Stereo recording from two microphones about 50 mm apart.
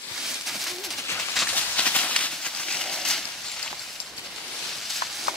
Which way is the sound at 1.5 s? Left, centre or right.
Left.